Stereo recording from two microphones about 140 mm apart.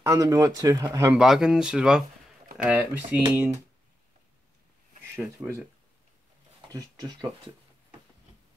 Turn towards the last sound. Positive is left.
turn(degrees=-30)  # may be behind; listen again after turning